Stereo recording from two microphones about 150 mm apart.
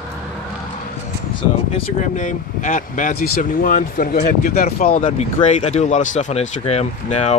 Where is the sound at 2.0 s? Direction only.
55° left (ahead or behind); by 5.0 s 75° left (ahead or behind).